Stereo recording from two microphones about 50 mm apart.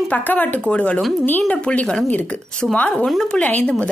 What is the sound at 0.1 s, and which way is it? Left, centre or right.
Speech, left.